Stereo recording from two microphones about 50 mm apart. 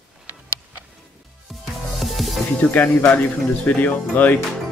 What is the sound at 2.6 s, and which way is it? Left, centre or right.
Speech, left.